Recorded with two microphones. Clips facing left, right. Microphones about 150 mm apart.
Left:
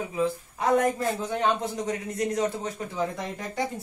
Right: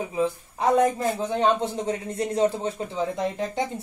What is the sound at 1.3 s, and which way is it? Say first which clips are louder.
Speech: right 6 dB; 30° right (ahead or behind).